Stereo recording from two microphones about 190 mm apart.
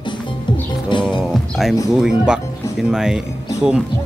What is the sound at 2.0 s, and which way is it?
Speech, 5° right (ahead or behind).